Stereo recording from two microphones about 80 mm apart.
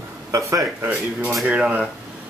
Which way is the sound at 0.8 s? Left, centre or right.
Right.